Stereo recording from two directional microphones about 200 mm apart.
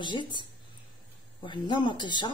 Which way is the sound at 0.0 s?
25° left (ahead or behind).